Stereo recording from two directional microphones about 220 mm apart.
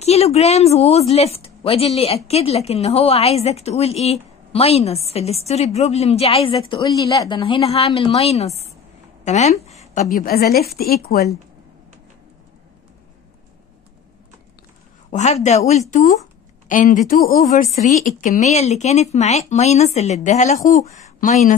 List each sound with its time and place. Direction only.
0.0 s a woman's voice: 30° left (ahead or behind)
15.0 s speech: 30° left (ahead or behind)
20.6 s speech: 15° left (ahead or behind)
21.0 s speech: 30° left (ahead or behind)